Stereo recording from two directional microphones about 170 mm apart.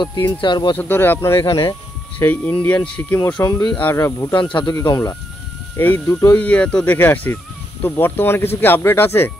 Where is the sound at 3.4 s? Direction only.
25° left (ahead or behind).